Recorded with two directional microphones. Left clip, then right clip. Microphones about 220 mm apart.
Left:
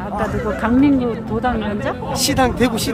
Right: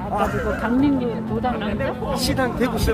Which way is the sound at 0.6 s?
20° left (ahead or behind).